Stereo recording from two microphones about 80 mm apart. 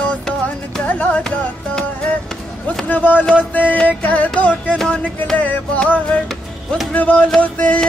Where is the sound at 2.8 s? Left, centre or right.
Centre.